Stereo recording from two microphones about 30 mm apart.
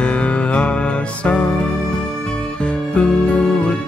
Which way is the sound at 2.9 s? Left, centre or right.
Left.